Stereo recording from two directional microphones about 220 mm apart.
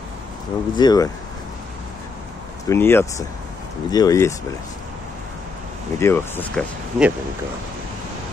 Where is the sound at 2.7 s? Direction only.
10° left (ahead or behind).